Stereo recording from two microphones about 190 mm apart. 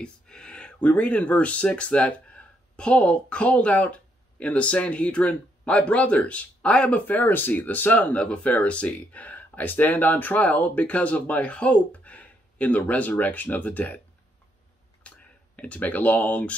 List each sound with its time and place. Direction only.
0.0 s speech: 5° left (ahead or behind)
15.0 s speech: 5° left (ahead or behind)